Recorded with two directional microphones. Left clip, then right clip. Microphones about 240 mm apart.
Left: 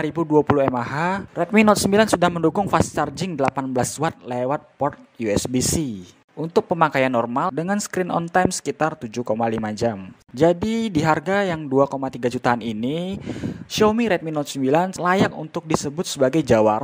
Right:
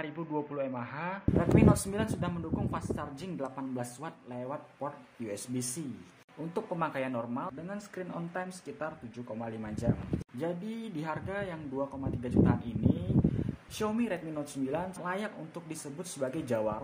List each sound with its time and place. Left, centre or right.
0.0 s speech: left
1.4 s speech: left